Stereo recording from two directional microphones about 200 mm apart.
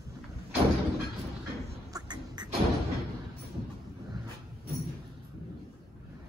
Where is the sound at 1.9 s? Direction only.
20° right (ahead or behind).